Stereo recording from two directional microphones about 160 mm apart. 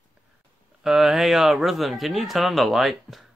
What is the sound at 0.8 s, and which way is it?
Speech, centre (ahead or behind).